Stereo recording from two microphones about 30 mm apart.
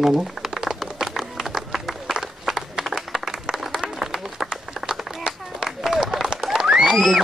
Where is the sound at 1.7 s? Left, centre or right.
Centre.